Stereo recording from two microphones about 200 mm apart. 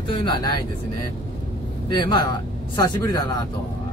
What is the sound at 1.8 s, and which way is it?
Speech, 20° left (ahead or behind).